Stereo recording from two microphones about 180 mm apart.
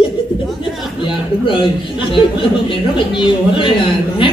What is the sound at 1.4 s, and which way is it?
Speech, 30° left (ahead or behind).